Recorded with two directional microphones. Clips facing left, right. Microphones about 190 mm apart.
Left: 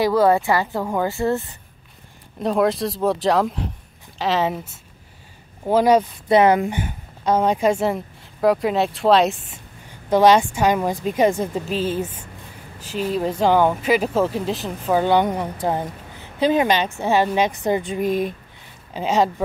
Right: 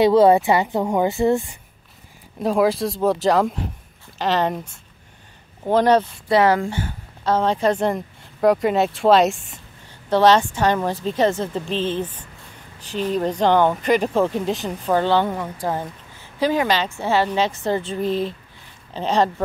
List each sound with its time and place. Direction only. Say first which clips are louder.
0.0 s a woman's voice: right 3 dB; 25° right (ahead or behind)
2.4 s a woman's voice: right 1 dB; centre (ahead or behind)
6.2 s a woman's voice: left 4 dB; 20° left (ahead or behind); by 9.5 s centre (ahead or behind)
10.0 s a woman's voice: left 1 dB; 10° left (ahead or behind)